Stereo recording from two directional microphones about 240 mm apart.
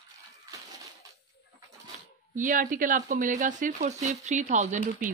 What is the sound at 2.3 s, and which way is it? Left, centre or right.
Speech, right.